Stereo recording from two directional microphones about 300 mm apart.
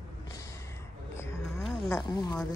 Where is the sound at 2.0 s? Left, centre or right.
Centre.